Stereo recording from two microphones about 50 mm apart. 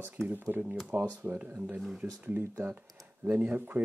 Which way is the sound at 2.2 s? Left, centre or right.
Right.